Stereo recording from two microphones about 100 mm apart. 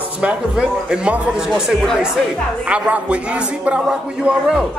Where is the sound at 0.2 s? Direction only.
10° right (ahead or behind).